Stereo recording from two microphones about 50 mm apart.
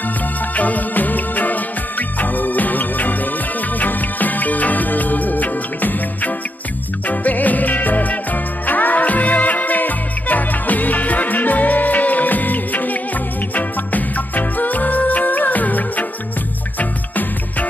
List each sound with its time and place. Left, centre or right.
0.6 s music: left